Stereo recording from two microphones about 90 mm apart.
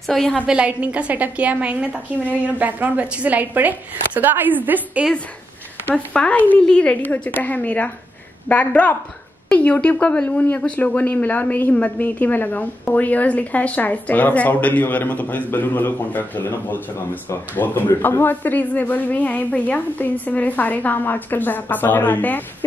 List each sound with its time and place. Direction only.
0.0 s a woman's voice: 5° left (ahead or behind)
0.5 s a woman's voice: 15° right (ahead or behind)
6.1 s a woman's voice: 15° left (ahead or behind)